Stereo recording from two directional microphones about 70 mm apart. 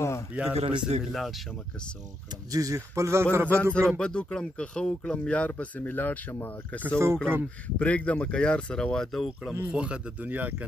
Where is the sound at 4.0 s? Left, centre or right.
Centre.